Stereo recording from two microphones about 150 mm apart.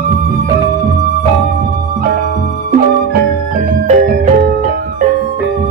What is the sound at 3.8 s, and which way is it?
Music, 65° right (ahead or behind).